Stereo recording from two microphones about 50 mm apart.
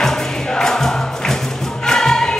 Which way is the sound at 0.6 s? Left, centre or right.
Centre.